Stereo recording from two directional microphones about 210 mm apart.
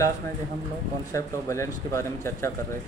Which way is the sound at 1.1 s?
15° left (ahead or behind).